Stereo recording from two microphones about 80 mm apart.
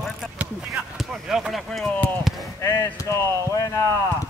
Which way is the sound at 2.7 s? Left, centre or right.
Left.